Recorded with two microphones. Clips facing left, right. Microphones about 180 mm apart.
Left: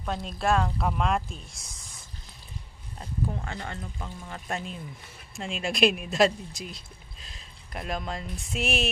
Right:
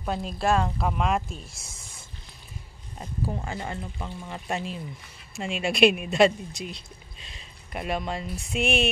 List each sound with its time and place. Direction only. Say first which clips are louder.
0.0 s speech: right 2 dB; 5° right (ahead or behind)